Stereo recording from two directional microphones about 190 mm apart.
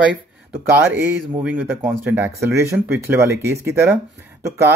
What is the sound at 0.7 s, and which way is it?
A man's voice, 10° right (ahead or behind).